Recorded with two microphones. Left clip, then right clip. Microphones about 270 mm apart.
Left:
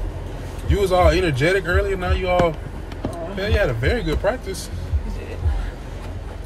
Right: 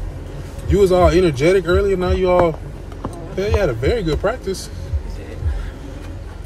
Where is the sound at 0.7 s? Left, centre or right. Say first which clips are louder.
Right 4 dB; centre.